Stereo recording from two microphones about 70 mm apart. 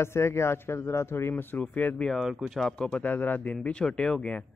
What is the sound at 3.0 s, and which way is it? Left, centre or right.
Speech, left.